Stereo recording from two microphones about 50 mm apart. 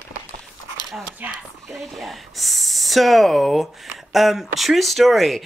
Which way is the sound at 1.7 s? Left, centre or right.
Centre.